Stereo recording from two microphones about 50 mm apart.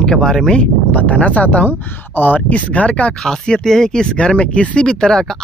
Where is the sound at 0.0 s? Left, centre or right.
Centre.